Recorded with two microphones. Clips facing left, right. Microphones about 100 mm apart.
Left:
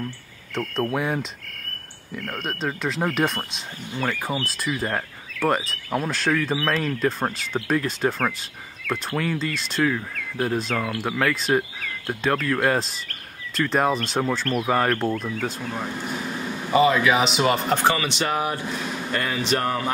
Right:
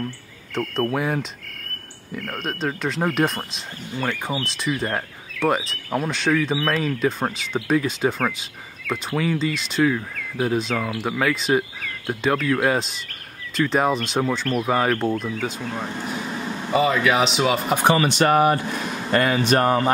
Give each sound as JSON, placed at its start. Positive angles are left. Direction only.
{"t": 0.6, "sound": "speech", "side_deg": 0}
{"t": 18.0, "sound": "speech", "side_deg": -50}